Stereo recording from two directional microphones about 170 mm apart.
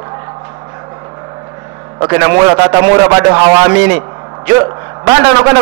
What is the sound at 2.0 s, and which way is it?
A man's voice, 15° right (ahead or behind).